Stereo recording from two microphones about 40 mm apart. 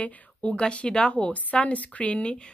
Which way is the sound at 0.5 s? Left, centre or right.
Left.